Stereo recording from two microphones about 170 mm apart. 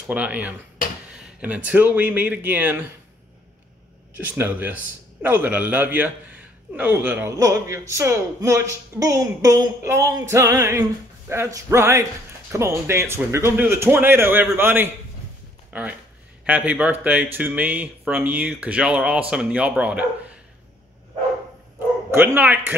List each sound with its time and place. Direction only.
0.0 s speech: 10° right (ahead or behind)
4.1 s speech: 10° right (ahead or behind)
22.1 s speech: 10° right (ahead or behind)